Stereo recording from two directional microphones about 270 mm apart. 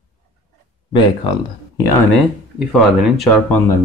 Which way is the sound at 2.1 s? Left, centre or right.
Centre.